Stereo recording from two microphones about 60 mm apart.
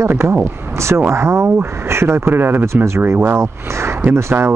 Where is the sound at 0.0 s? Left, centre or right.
Right.